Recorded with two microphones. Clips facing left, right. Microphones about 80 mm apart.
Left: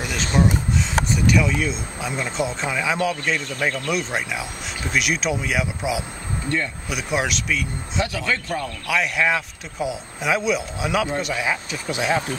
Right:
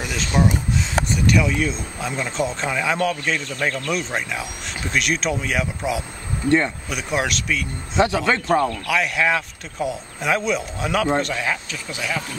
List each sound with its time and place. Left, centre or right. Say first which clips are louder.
0.3 s speech: even; centre
8.0 s speech: right 6 dB; right
8.8 s speech: right 1 dB; centre
11.7 s speech: left 5 dB; left